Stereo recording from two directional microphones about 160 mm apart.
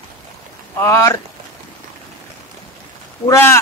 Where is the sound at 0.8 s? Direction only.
15° left (ahead or behind).